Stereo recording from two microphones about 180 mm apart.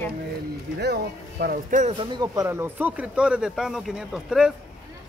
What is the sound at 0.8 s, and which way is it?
Speech, 60° right (ahead or behind).